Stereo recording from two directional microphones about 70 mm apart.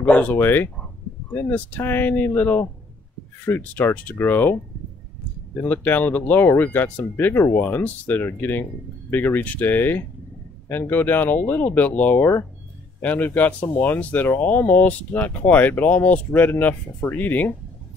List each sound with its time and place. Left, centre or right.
0.2 s speech: left
5.6 s speech: left